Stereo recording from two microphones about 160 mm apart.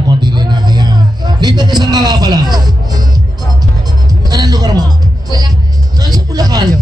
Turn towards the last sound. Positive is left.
turn(degrees=-25)  # may be behind; listen again after turning